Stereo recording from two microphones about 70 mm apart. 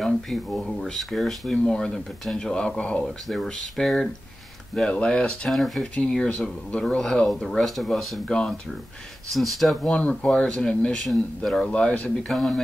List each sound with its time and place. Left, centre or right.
0.5 s speech: centre
1.5 s speech: centre
3.1 s speech: centre
5.5 s speech: centre
5.8 s speech: centre
8.3 s speech: centre
9.3 s speech: centre
9.8 s speech: centre
12.3 s speech: centre